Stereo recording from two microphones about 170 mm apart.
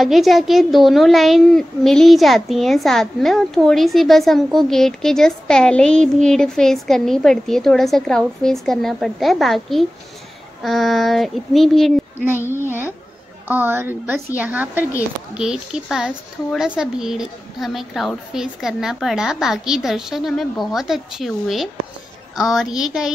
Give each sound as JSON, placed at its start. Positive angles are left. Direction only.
{"t": 0.0, "sound": "a child's voice", "side_deg": 0}
{"t": 12.6, "sound": "a woman's voice", "side_deg": -10}